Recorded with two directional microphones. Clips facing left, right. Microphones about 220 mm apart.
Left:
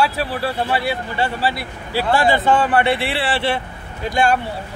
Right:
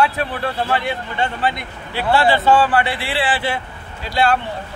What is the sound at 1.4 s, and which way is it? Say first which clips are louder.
Speech: even; 35° left (ahead or behind).